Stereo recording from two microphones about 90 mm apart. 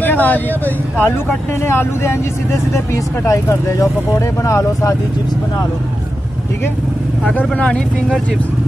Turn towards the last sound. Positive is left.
turn(degrees=10)  # may be behind; listen again after turning